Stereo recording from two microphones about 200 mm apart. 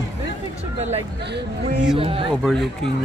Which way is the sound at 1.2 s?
55° right (ahead or behind).